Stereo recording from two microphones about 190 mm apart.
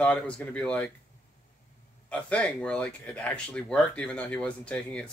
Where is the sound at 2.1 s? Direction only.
5° left (ahead or behind).